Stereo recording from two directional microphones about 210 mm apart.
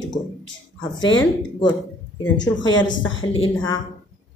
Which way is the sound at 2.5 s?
60° left (ahead or behind).